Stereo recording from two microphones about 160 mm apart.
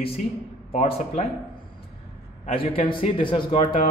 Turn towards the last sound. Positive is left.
turn(degrees=35)  # may be behind; listen again after turning